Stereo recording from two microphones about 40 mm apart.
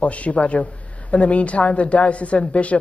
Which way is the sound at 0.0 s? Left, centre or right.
Left.